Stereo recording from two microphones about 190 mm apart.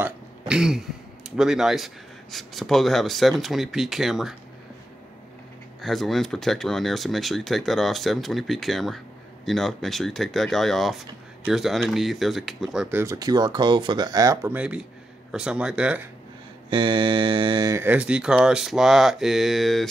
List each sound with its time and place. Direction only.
0.0 s throat clearing: 5° right (ahead or behind)
1.3 s speech: 5° right (ahead or behind)
5.8 s speech: centre (ahead or behind)
13.0 s speech: 20° right (ahead or behind)
16.7 s speech: 25° right (ahead or behind); by 19.9 s centre (ahead or behind)